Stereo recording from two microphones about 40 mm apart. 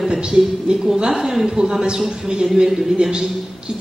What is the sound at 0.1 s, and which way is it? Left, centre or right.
Speech, centre.